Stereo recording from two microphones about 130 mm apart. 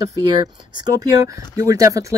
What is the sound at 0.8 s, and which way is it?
Speech, 30° right (ahead or behind).